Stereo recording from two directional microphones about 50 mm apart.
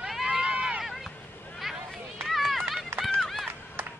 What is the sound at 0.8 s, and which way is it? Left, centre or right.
Run, centre.